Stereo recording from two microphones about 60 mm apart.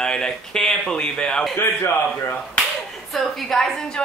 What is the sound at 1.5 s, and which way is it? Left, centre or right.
Speech, left.